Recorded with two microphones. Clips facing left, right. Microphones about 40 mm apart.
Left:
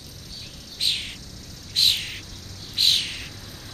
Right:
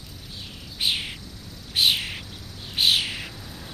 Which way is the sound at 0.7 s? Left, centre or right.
Centre.